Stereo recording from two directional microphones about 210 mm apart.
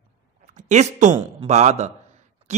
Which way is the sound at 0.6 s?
35° right (ahead or behind).